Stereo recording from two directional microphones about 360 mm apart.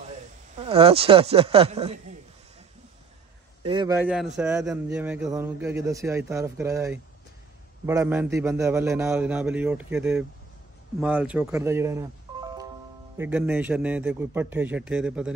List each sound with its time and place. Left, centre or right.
0.6 s a man's voice: centre
3.6 s a man's voice: centre